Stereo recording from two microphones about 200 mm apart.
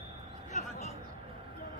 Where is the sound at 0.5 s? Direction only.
40° left (ahead or behind).